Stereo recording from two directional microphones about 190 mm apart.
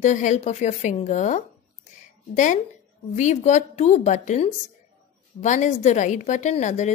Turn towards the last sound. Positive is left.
turn(degrees=40)  # may be behind; listen again after turning